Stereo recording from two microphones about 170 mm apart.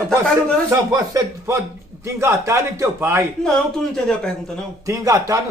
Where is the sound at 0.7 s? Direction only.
20° right (ahead or behind).